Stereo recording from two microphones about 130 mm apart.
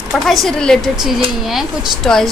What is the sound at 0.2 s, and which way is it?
Speech, centre (ahead or behind).